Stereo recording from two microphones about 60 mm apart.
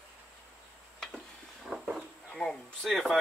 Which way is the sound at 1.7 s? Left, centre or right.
Centre.